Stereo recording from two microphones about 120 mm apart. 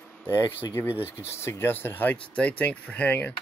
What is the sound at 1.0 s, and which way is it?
Speech, 20° left (ahead or behind).